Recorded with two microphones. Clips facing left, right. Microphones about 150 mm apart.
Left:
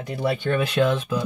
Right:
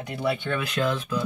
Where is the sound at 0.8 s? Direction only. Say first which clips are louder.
Left 4 dB; 25° left (ahead or behind).